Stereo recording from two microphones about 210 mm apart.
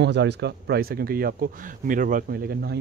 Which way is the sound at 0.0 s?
55° right (ahead or behind).